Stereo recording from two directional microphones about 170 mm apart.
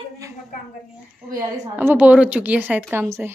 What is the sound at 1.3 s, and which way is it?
A woman's voice, 15° right (ahead or behind).